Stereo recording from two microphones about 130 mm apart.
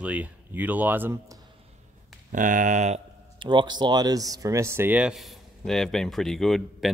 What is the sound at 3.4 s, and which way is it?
Speech, 35° right (ahead or behind).